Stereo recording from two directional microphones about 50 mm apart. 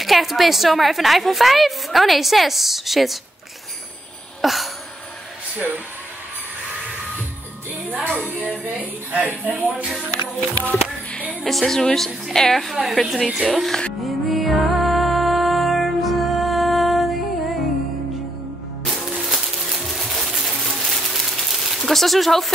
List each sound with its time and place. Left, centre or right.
0.0 s a woman's voice: centre
4.4 s a sound: centre
7.8 s speech: right
10.6 s music: left
11.4 s a woman's voice: centre
14.0 s music: centre
19.1 s a sound: centre